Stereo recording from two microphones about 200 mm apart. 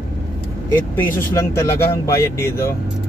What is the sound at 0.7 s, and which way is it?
Speech, 10° left (ahead or behind).